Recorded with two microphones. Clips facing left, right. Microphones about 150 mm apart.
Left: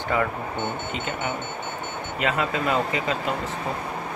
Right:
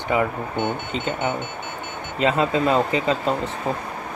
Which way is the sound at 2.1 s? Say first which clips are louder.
Right 5 dB; 25° right (ahead or behind).